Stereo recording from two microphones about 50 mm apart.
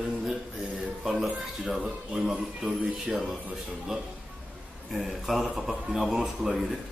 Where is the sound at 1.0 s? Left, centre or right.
Centre.